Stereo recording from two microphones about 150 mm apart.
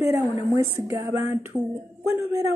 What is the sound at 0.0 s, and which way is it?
A woman's voice, 20° right (ahead or behind).